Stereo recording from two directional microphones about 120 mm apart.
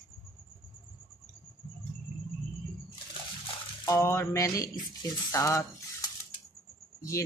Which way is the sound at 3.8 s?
25° left (ahead or behind).